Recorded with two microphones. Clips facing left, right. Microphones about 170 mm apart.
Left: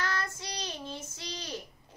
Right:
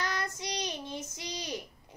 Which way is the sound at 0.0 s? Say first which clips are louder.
Even; 15° right (ahead or behind).